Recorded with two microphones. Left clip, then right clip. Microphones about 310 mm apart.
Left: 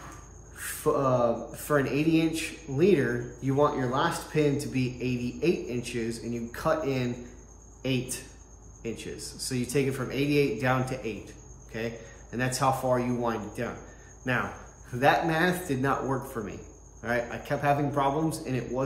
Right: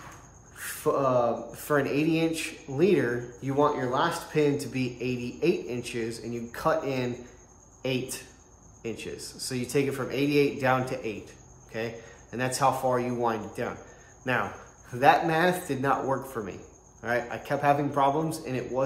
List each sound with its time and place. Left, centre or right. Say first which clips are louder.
0.6 s speech: even; centre